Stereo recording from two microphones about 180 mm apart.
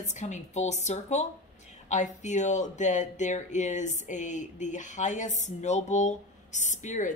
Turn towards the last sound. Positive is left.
turn(degrees=45)  # may be behind; listen again after turning